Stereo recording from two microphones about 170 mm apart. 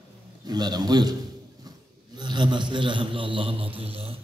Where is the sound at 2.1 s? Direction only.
25° right (ahead or behind).